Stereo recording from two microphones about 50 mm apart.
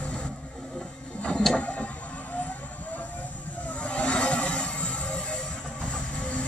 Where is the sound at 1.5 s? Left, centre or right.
Left.